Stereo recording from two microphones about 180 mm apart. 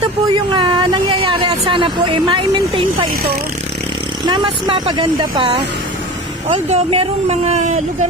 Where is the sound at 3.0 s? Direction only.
55° right (ahead or behind).